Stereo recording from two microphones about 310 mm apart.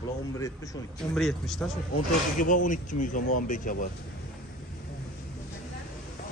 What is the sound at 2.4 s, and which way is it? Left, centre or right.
Speech, left.